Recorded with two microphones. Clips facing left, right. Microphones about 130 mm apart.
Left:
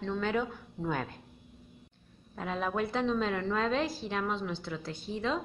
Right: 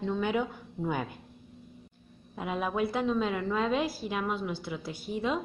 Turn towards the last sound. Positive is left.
turn(degrees=-10)  # may be behind; listen again after turning